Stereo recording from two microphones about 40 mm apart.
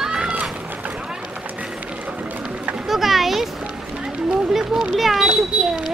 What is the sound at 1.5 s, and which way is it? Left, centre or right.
Run, right.